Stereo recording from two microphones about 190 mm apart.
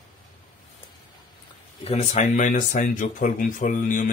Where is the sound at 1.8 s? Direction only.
35° left (ahead or behind).